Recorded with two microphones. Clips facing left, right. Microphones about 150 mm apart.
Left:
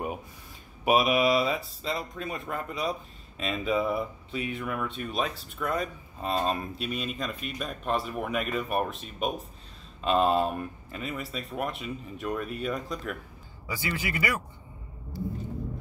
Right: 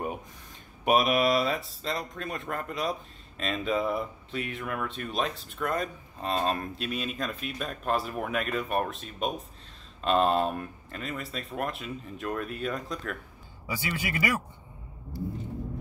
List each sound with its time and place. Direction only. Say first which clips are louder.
0.8 s speech: left 1 dB; centre (ahead or behind)
13.7 s a man's voice: even; 15° right (ahead or behind)